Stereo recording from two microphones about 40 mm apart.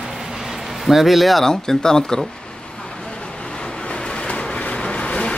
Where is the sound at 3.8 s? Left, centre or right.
Left.